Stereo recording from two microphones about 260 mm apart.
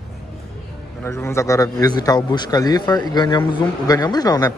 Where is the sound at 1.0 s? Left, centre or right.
Centre.